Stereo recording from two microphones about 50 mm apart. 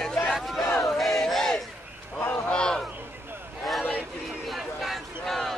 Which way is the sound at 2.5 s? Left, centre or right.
Centre.